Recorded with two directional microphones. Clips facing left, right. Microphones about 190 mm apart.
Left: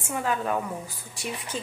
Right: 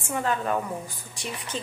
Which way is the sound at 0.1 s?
5° left (ahead or behind).